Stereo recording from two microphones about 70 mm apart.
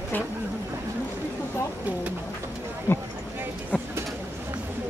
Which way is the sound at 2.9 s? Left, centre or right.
Left.